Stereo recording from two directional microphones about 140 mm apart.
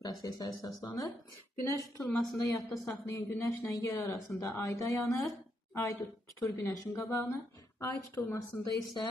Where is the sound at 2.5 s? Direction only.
20° left (ahead or behind).